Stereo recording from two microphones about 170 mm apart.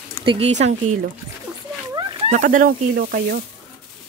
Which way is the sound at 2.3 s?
50° right (ahead or behind).